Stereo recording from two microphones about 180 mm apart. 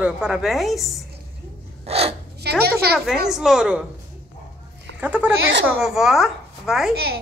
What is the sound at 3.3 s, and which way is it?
Speech, centre (ahead or behind).